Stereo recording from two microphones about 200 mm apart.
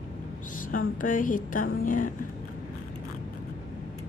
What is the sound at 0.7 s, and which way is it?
Speech, 40° left (ahead or behind).